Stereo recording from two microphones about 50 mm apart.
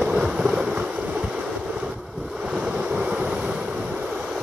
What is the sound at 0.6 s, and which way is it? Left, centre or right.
Boat, right.